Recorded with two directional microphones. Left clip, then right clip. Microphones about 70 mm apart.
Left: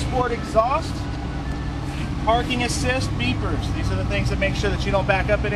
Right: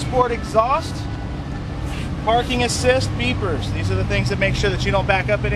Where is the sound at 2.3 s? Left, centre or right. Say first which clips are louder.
Right 3 dB; centre.